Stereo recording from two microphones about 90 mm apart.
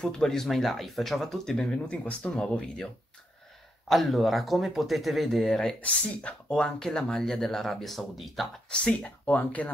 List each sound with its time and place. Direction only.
0.0 s speech: 5° left (ahead or behind)
3.9 s speech: centre (ahead or behind)
8.7 s speech: 15° left (ahead or behind)